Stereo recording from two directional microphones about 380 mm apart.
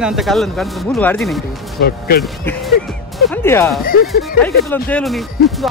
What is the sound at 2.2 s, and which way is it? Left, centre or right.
Speech, centre.